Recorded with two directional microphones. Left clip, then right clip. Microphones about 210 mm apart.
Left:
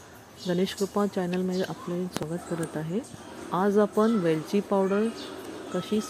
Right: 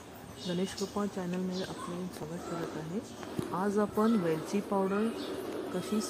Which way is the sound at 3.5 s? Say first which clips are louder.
Left 8 dB; 20° left (ahead or behind).